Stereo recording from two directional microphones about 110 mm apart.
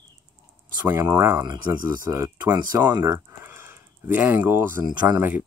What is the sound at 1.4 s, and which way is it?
Speech, 40° right (ahead or behind).